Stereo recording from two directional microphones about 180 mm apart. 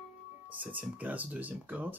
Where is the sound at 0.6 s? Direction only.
10° right (ahead or behind).